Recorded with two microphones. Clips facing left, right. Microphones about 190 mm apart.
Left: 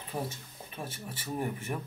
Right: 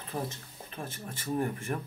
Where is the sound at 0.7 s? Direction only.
10° left (ahead or behind).